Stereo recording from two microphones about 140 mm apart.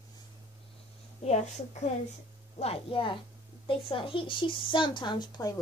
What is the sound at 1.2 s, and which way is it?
A woman's voice, 55° left (ahead or behind).